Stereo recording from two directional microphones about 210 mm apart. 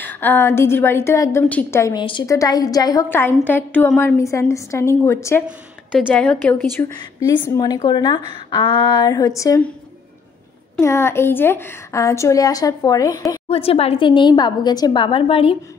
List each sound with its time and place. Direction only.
0.0 s a woman's voice: 10° left (ahead or behind)
10.8 s a woman's voice: 10° left (ahead or behind)
13.5 s a woman's voice: 30° left (ahead or behind)